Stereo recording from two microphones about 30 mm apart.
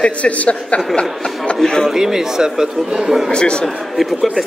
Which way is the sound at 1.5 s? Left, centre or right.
Left.